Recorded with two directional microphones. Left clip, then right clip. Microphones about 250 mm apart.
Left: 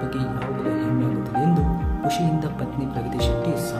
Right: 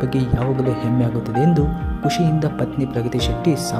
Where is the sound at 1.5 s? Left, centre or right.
Right.